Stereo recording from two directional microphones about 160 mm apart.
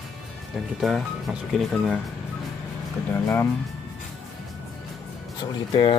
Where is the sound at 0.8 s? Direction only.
Centre (ahead or behind).